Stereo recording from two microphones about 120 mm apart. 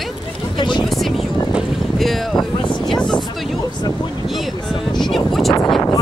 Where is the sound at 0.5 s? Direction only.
40° left (ahead or behind).